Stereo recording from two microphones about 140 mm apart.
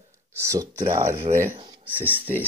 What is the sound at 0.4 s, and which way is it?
Speech, 25° right (ahead or behind).